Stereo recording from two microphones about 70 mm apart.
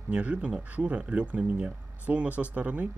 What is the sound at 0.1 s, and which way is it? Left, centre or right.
Speech, centre.